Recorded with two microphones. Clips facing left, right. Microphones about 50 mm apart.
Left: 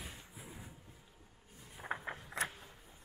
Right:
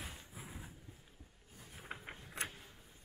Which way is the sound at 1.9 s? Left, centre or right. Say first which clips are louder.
Left 8 dB; left.